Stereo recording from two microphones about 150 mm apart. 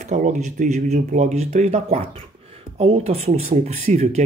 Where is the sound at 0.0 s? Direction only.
50° right (ahead or behind).